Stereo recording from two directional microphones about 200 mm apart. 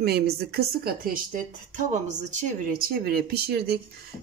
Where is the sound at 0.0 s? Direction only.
55° right (ahead or behind).